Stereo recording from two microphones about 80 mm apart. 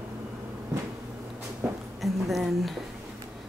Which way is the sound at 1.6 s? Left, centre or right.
Right.